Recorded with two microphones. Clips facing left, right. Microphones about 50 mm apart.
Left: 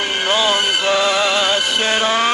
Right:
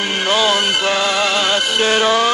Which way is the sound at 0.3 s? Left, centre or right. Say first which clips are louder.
Right 1 dB; left.